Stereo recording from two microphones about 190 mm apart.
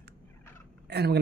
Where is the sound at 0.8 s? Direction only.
60° right (ahead or behind).